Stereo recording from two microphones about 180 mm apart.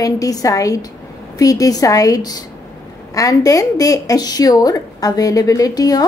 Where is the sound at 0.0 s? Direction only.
20° left (ahead or behind).